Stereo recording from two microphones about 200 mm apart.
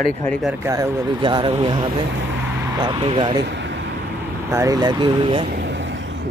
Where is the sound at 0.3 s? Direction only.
Centre (ahead or behind).